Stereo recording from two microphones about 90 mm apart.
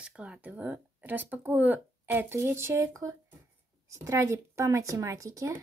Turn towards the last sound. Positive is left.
turn(degrees=-35)  # may be behind; listen again after turning